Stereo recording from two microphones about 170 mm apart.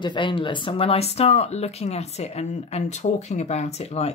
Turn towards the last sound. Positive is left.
turn(degrees=40)  # may be behind; listen again after turning